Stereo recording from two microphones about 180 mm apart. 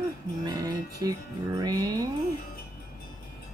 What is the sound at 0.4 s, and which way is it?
Music, 20° right (ahead or behind).